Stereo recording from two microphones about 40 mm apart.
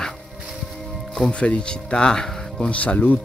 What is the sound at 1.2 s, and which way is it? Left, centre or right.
Speech, left.